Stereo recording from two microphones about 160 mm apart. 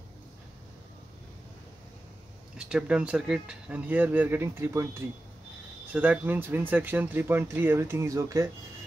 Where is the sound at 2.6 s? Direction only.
5° right (ahead or behind).